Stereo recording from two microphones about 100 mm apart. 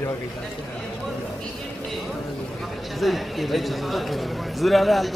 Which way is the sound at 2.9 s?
Centre (ahead or behind).